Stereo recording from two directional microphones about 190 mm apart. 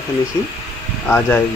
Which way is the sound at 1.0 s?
10° left (ahead or behind).